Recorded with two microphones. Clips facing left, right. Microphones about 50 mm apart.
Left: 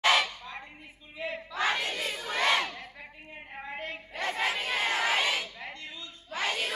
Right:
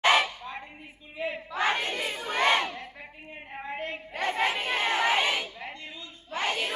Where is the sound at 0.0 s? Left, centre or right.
Right.